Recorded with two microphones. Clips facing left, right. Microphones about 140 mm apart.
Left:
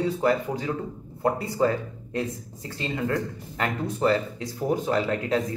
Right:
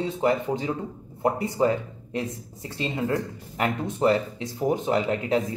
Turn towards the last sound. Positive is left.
turn(degrees=-20)  # may be behind; listen again after turning